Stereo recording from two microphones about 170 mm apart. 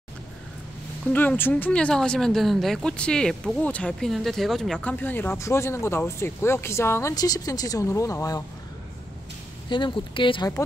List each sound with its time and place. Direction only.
1.1 s speech: 10° left (ahead or behind)
9.7 s speech: 30° left (ahead or behind)